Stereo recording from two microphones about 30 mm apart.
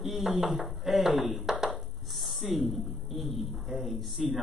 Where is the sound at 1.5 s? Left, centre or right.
Centre.